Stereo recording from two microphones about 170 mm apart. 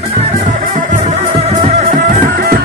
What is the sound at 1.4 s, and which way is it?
Music, 45° right (ahead or behind).